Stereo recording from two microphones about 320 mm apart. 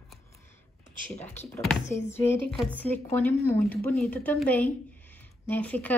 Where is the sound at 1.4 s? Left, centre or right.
Centre.